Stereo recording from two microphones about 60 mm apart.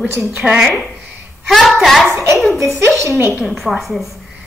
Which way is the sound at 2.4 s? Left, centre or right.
Centre.